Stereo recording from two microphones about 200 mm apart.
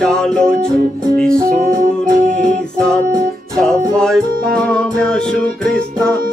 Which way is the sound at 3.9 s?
5° left (ahead or behind).